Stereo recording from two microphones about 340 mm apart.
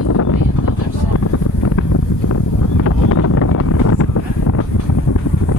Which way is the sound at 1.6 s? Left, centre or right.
Left.